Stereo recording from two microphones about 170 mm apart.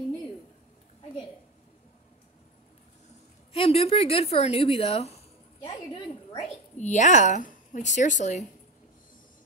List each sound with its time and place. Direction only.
3.5 s a woman's voice: 35° left (ahead or behind)
6.4 s a woman's voice: 45° left (ahead or behind)